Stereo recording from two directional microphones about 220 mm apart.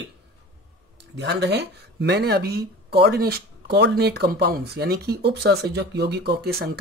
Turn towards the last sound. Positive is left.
turn(degrees=-45)  # may be behind; listen again after turning